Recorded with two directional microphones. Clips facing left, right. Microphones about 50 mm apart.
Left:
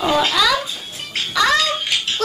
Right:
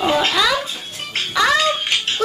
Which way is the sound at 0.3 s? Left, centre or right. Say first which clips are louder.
Left 1 dB; centre.